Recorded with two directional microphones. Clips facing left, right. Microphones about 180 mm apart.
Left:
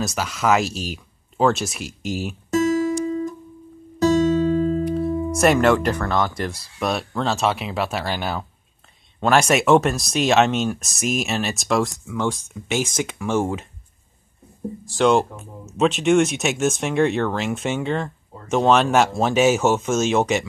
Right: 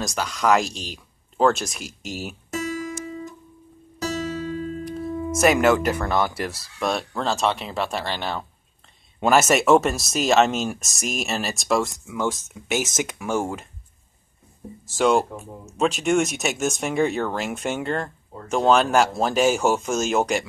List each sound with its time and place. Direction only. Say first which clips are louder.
0.0 s speech: left 1 dB; 5° left (ahead or behind)
4.4 s music: left 10 dB; 35° left (ahead or behind)
5.0 s speech: right 1 dB; centre (ahead or behind)
14.9 s speech: left 2 dB; centre (ahead or behind)